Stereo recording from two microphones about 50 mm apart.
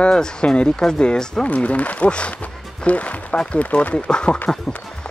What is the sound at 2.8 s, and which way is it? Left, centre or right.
Music, left.